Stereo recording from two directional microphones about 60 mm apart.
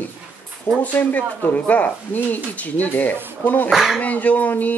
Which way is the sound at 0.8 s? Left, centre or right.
Left.